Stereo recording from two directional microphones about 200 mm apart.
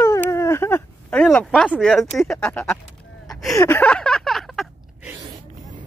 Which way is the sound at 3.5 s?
10° left (ahead or behind).